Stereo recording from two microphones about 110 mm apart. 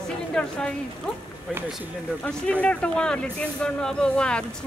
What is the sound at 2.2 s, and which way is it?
Speech, 10° left (ahead or behind).